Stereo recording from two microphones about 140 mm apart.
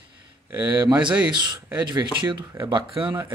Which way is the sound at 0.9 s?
10° right (ahead or behind).